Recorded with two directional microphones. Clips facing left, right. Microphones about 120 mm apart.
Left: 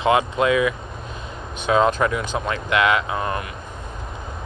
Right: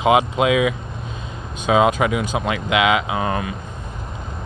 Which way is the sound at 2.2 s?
15° right (ahead or behind).